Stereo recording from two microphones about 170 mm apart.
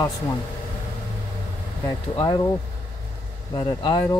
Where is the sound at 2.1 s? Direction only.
30° left (ahead or behind).